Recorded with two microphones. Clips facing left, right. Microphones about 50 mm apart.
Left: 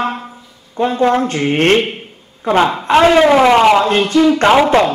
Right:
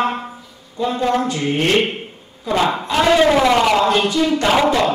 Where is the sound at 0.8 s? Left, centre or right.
Left.